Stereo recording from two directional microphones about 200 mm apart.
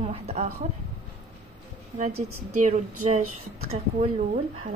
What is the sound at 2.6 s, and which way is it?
Speech, 40° right (ahead or behind).